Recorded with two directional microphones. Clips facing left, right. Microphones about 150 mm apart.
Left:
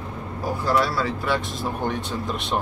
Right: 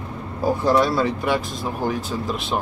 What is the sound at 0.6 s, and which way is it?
Speech, 20° right (ahead or behind).